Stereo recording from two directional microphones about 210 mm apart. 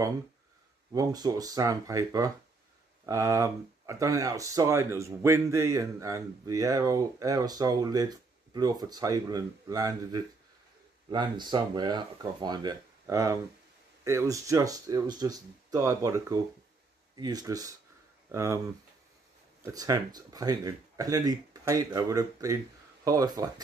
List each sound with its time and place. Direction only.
0.9 s speech: 20° right (ahead or behind)
19.6 s speech: 15° right (ahead or behind)